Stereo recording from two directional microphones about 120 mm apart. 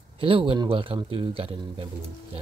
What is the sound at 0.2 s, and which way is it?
Speech, 50° right (ahead or behind).